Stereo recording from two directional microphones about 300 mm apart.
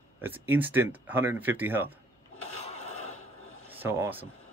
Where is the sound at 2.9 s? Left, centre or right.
Left.